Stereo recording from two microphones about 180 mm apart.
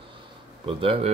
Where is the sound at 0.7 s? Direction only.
30° right (ahead or behind).